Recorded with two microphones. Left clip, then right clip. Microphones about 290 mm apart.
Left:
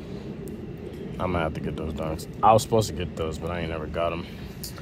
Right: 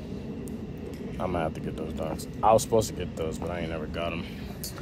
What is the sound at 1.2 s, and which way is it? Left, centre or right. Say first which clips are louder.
Speech: left 3 dB; left.